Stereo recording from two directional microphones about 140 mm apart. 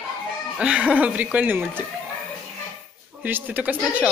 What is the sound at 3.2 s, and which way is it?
Speech, 15° right (ahead or behind).